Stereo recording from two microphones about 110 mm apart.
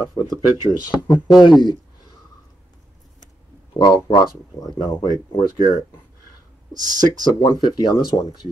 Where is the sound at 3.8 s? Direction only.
40° left (ahead or behind).